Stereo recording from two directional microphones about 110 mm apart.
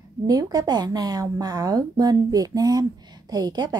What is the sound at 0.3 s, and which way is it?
A woman's voice, 35° right (ahead or behind).